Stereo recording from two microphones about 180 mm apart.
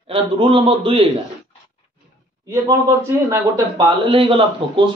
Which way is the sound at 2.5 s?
15° right (ahead or behind).